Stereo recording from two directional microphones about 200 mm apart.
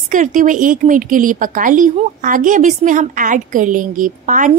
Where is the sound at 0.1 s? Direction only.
40° right (ahead or behind).